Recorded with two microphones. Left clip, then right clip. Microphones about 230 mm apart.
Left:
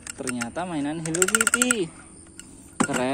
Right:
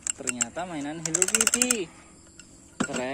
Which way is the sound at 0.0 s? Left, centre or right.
Centre.